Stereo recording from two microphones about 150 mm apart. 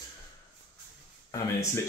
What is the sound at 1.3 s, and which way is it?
Speech, 20° left (ahead or behind).